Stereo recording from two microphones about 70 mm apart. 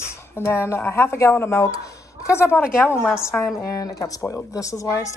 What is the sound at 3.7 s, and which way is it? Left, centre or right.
Speech, left.